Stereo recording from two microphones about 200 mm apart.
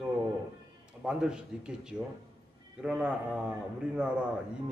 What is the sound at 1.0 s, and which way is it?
A man's voice, 5° right (ahead or behind).